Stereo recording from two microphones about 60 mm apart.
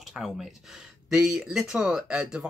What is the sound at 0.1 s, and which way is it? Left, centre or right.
Speech, centre.